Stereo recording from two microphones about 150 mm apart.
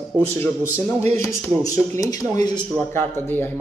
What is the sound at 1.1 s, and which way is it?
Speech, 20° left (ahead or behind).